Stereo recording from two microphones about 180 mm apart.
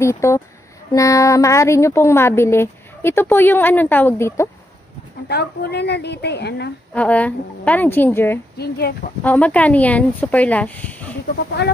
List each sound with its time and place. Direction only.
0.0 s speech: 15° left (ahead or behind)
5.3 s a woman's voice: 65° left (ahead or behind)
6.9 s speech: 10° left (ahead or behind)
8.5 s speech: 60° left (ahead or behind)
9.2 s speech: 10° left (ahead or behind)
11.6 s a woman's voice: 70° left (ahead or behind)